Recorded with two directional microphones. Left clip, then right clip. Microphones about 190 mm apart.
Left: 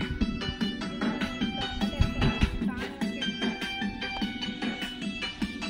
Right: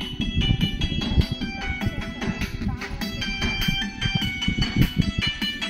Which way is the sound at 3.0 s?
45° right (ahead or behind).